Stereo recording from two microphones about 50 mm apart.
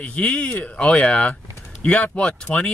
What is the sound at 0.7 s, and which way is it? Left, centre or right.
Speech, centre.